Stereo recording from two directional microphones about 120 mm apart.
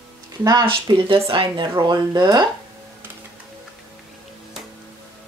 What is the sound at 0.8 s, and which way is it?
Speech, 45° right (ahead or behind).